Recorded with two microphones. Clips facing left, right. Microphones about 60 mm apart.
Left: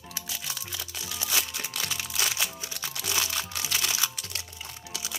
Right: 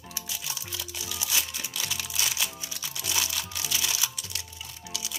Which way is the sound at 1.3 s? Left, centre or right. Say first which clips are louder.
Left 2 dB; left.